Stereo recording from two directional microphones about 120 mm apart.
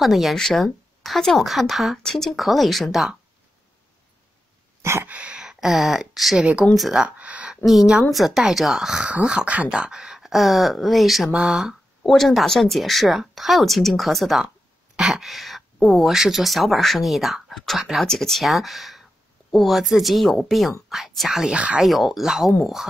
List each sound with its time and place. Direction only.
0.0 s speech: centre (ahead or behind)
4.8 s a sound: 20° right (ahead or behind)
5.1 s speech: 5° right (ahead or behind)